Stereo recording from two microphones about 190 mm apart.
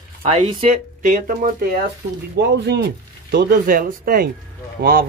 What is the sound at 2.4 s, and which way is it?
Speech, 60° right (ahead or behind).